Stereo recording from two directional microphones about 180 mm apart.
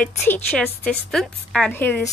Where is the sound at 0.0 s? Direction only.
10° left (ahead or behind).